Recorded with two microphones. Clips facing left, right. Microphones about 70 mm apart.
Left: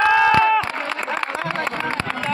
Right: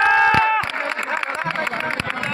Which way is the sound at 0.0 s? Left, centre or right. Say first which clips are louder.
Even; centre.